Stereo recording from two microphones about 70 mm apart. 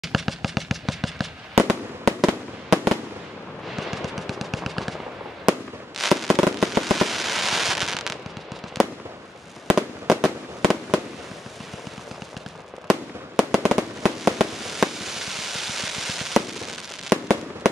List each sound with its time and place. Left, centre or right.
0.0 s fireworks: centre
13.4 s fireworks: centre